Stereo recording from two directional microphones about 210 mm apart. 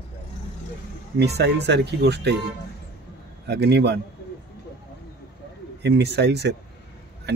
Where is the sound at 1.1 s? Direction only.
50° right (ahead or behind).